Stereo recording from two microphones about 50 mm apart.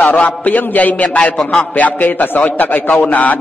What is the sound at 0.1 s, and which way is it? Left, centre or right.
A man's voice, left.